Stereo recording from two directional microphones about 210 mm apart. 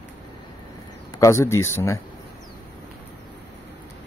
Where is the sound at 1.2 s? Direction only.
15° left (ahead or behind).